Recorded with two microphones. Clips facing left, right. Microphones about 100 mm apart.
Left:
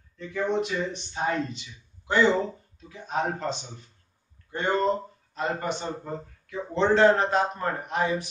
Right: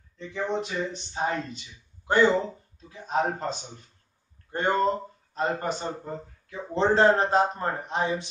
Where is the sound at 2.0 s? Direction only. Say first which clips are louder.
Right 1 dB; 45° right (ahead or behind).